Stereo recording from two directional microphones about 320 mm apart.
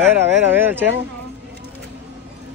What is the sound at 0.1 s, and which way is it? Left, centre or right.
Speech, centre.